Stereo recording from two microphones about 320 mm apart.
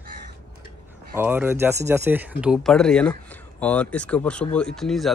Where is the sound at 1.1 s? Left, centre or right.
Centre.